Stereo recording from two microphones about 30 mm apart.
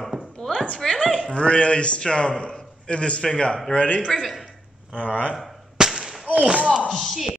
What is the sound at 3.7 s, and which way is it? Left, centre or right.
Speech, left.